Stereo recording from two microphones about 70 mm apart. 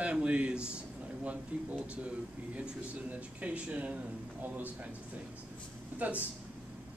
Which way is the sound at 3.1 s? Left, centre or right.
Right.